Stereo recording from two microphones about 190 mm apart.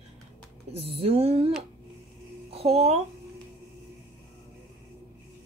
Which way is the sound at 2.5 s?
30° right (ahead or behind).